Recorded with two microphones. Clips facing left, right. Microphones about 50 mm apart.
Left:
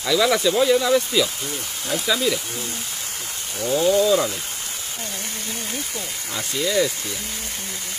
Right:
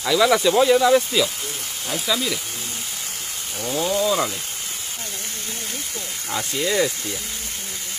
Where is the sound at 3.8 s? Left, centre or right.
Centre.